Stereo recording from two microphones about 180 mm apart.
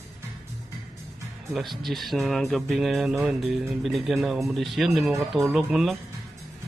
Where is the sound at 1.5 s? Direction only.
Centre (ahead or behind).